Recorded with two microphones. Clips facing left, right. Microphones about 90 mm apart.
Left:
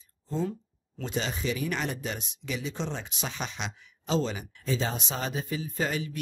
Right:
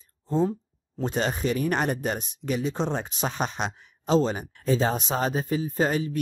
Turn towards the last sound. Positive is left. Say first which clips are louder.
# right 6 dB
turn(degrees=-40)  # may be behind; listen again after turning